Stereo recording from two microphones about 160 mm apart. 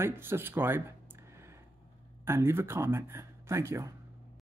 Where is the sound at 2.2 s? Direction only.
15° right (ahead or behind).